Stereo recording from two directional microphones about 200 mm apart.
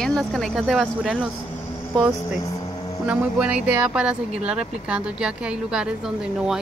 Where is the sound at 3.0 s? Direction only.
5° right (ahead or behind).